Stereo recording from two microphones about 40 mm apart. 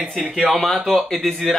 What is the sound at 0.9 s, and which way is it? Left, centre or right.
Speech, centre.